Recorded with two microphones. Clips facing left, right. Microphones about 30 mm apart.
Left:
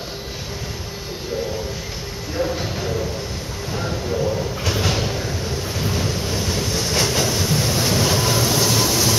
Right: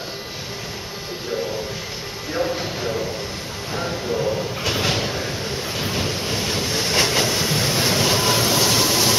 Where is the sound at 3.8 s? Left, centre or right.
Centre.